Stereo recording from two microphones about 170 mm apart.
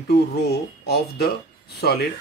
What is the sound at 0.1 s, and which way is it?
Speech, 70° left (ahead or behind).